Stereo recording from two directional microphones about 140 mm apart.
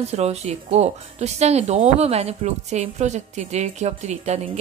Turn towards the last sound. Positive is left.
turn(degrees=-55)  # may be behind; listen again after turning